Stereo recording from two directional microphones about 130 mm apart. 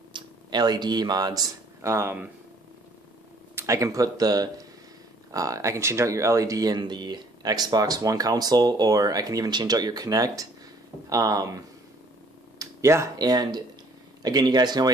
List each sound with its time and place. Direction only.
0.1 s speech: 35° right (ahead or behind)
3.5 s speech: 25° right (ahead or behind)